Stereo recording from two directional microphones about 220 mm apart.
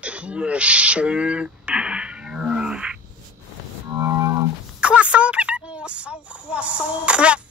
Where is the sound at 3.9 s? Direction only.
10° right (ahead or behind).